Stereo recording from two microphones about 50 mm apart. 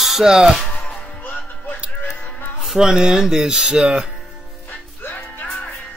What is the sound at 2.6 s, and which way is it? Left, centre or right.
Speech, centre.